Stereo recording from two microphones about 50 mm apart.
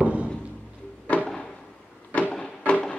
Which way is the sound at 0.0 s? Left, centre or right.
Right.